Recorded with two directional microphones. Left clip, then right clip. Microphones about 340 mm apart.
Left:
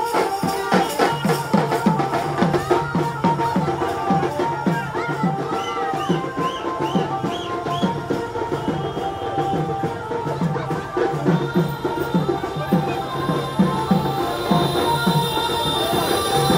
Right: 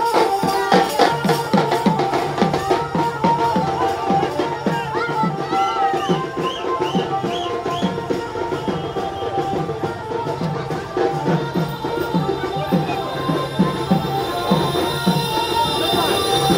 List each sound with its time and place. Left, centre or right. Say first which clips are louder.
0.7 s music: right 3 dB; right